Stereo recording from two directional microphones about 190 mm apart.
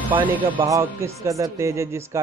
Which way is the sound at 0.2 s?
10° right (ahead or behind).